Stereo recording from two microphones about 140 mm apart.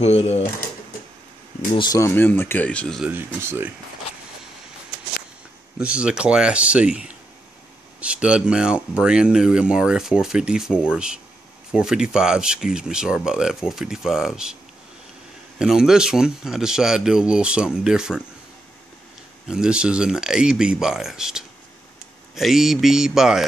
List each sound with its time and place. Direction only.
0.0 s speech: 50° left (ahead or behind)
1.8 s speech: 25° left (ahead or behind); by 3.0 s 10° left (ahead or behind)
3.3 s speech: 15° right (ahead or behind)
5.8 s speech: 5° right (ahead or behind)
15.6 s speech: 5° right (ahead or behind)
19.4 s speech: 5° right (ahead or behind)